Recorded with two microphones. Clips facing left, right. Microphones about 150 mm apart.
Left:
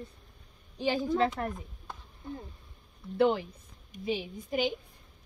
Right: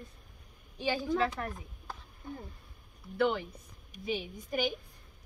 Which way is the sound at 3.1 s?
30° left (ahead or behind).